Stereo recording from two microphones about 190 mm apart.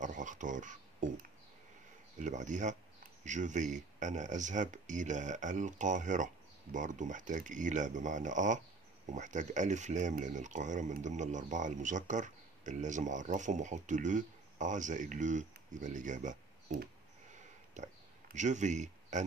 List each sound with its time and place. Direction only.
0.0 s speech: 40° right (ahead or behind)